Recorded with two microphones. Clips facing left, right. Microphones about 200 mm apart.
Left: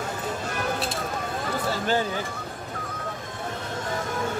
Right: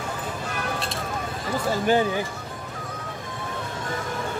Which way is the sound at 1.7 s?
15° right (ahead or behind).